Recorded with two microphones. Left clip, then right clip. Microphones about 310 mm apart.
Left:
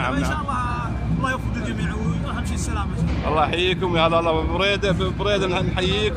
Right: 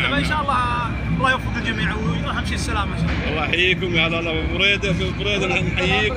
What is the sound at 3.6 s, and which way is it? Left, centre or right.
Speech, left.